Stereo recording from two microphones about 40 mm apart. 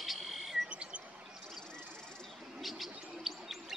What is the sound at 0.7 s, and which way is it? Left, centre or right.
Bird, right.